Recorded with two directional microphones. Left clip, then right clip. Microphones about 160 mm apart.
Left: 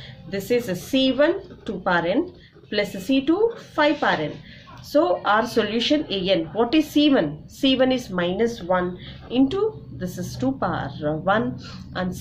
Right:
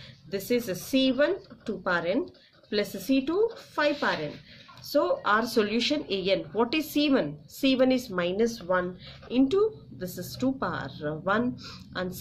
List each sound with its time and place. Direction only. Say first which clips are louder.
0.3 s speech: left 5 dB; 35° right (ahead or behind)